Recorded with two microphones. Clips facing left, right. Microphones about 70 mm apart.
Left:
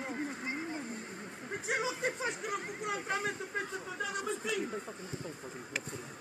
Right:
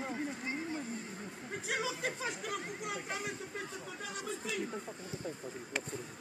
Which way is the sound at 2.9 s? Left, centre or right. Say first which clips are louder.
Left 7 dB; left.